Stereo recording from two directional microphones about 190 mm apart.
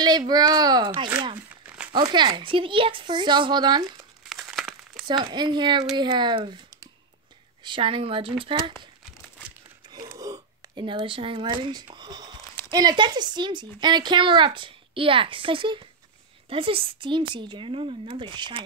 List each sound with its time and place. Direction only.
0.0 s a sound: 20° right (ahead or behind)
1.9 s speech: 25° right (ahead or behind)
4.3 s crumpling: centre (ahead or behind)
5.0 s speech: 25° right (ahead or behind)
9.8 s a sound: 20° right (ahead or behind)
11.6 s speech: 25° right (ahead or behind)